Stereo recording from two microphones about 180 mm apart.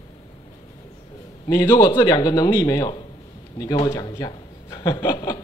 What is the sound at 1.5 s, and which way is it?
A man's voice, 20° left (ahead or behind).